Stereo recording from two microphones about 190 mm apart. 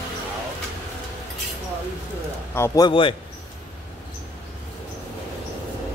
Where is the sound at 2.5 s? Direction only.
15° left (ahead or behind).